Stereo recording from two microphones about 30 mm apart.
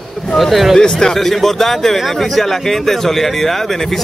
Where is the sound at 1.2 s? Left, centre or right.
Centre.